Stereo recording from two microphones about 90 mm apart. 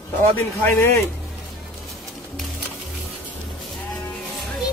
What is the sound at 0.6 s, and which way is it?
Speech, 25° left (ahead or behind).